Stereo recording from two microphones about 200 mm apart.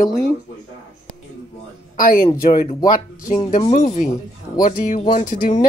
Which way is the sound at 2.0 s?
45° left (ahead or behind).